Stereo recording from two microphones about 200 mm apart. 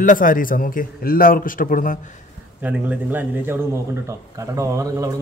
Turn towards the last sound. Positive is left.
turn(degrees=-15)  # may be behind; listen again after turning